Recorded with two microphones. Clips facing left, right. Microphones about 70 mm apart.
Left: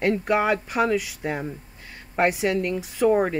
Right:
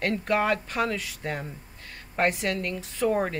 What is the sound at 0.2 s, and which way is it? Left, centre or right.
Speech, centre.